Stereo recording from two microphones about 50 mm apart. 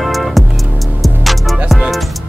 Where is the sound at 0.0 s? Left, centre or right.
Centre.